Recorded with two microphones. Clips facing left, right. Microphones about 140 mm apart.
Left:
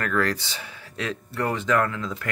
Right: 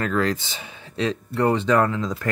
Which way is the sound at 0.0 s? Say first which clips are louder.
Right 2 dB; 20° right (ahead or behind).